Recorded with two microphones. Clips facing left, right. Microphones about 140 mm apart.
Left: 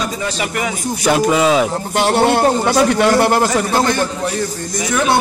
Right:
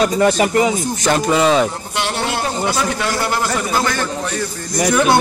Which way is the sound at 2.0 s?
45° left (ahead or behind).